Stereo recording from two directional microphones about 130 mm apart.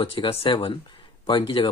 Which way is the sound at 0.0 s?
45° left (ahead or behind).